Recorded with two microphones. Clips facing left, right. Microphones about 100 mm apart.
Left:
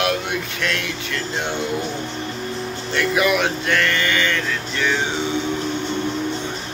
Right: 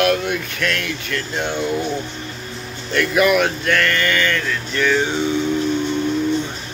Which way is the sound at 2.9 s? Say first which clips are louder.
Right 3 dB; 20° left (ahead or behind).